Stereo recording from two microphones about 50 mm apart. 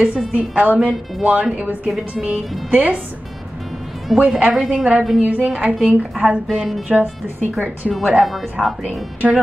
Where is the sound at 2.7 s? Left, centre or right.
Right.